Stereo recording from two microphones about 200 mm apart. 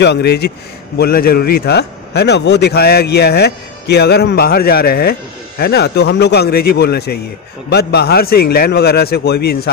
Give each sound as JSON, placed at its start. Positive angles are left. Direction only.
{"t": 0.0, "sound": "a man's voice", "side_deg": 55}